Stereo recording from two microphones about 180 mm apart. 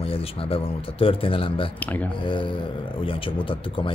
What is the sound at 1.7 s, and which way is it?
Speech, 10° left (ahead or behind).